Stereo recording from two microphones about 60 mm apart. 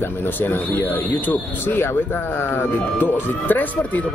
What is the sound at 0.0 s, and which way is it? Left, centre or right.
Speech, left.